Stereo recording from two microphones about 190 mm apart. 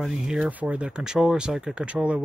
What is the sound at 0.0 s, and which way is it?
Speech, centre (ahead or behind).